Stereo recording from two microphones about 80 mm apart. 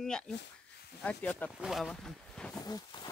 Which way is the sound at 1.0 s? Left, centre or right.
Centre.